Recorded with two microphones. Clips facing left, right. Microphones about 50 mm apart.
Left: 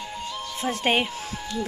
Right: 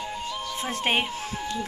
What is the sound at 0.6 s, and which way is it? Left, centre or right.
Speech, centre.